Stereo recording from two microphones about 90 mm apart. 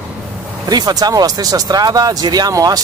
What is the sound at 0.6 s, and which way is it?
Speech, 45° right (ahead or behind).